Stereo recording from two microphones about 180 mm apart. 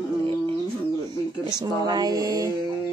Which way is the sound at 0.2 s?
30° right (ahead or behind).